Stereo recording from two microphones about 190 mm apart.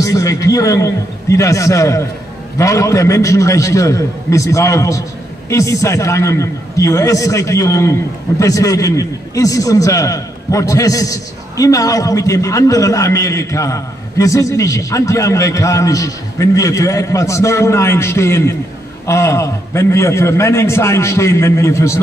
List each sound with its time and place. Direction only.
0.0 s a man's voice: 15° left (ahead or behind)